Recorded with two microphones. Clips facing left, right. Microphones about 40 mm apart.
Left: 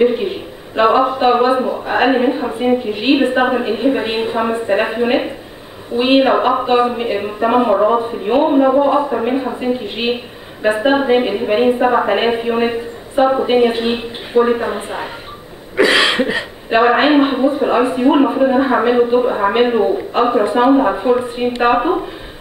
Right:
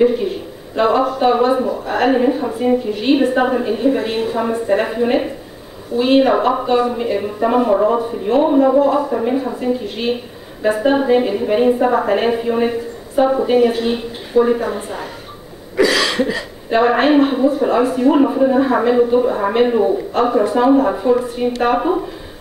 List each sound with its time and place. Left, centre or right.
0.0 s speech: left